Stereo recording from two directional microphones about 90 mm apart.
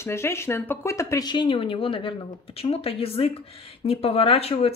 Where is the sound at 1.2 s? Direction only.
60° left (ahead or behind).